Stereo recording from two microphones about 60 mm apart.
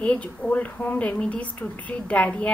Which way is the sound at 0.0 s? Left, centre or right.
Left.